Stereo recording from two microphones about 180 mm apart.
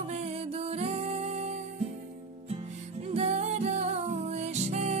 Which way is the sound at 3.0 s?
35° right (ahead or behind).